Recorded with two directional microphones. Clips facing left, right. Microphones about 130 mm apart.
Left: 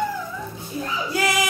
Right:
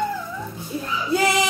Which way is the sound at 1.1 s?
25° right (ahead or behind).